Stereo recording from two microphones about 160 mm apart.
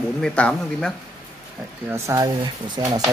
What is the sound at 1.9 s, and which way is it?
Speech, 20° right (ahead or behind).